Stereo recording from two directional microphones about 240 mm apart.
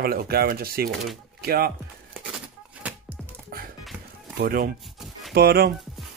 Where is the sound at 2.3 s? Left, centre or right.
Centre.